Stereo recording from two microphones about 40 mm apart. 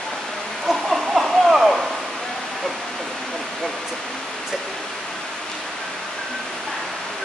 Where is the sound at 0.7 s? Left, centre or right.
Centre.